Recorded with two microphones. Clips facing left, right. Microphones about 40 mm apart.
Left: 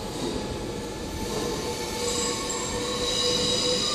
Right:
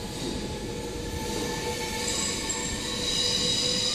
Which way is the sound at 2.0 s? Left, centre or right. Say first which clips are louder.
Left 3 dB; centre.